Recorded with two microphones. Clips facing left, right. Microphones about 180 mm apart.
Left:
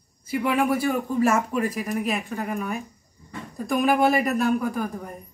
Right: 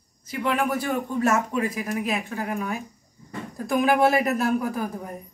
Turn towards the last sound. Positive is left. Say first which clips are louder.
# left 1 dB
turn(degrees=-5)  # may be behind; listen again after turning